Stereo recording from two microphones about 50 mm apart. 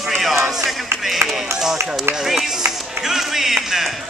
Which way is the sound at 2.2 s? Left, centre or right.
Centre.